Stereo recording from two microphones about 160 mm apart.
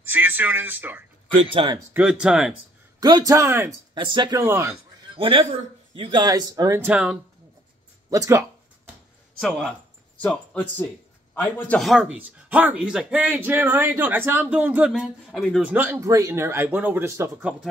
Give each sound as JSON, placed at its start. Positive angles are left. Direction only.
{"t": 0.1, "sound": "speech", "side_deg": -10}
{"t": 1.4, "sound": "speech", "side_deg": -35}
{"t": 2.0, "sound": "a man's voice", "side_deg": -5}
{"t": 3.0, "sound": "a man's voice", "side_deg": -25}
{"t": 3.9, "sound": "speech", "side_deg": -30}
{"t": 4.4, "sound": "speech", "side_deg": -15}
{"t": 5.1, "sound": "a man's voice", "side_deg": -35}
{"t": 6.1, "sound": "a man's voice", "side_deg": -25}
{"t": 6.9, "sound": "speech", "side_deg": -5}
{"t": 8.1, "sound": "a sound", "side_deg": -20}
{"t": 9.4, "sound": "a man's voice", "side_deg": 5}
{"t": 11.9, "sound": "speech", "side_deg": -5}
{"t": 14.9, "sound": "a man's voice", "side_deg": 0}
{"t": 15.7, "sound": "speech", "side_deg": -15}